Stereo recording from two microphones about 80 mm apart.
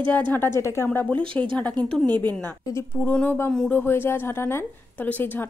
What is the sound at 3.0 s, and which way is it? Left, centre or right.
A woman's voice, left.